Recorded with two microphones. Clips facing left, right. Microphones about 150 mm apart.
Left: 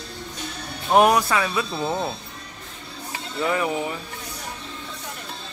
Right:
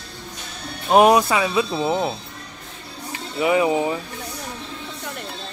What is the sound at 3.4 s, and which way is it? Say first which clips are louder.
Speech: right 6 dB; 15° right (ahead or behind).